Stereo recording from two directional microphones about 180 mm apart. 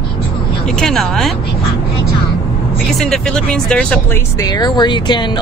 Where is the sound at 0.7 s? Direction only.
Centre (ahead or behind).